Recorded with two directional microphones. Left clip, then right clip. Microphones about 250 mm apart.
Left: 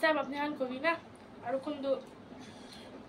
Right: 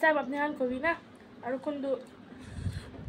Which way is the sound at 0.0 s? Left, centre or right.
Centre.